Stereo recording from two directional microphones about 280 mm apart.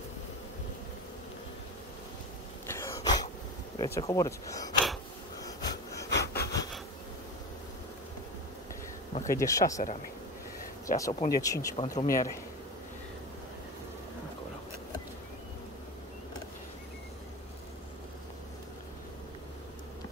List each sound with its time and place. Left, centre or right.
2.6 s throat clearing: centre
3.7 s speech: centre
5.4 s wheeze: centre
6.0 s a sound: left
6.4 s bee: centre
9.1 s a sound: left
9.4 s speech: centre
10.9 s speech: left
11.2 s speech: centre